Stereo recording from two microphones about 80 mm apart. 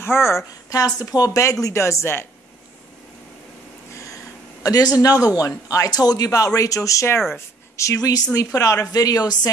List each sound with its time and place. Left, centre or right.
0.0 s speech: left
0.7 s speech: left
3.9 s a sound: left
4.6 s speech: left